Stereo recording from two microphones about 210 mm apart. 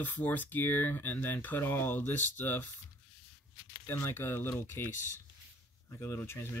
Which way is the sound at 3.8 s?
10° left (ahead or behind).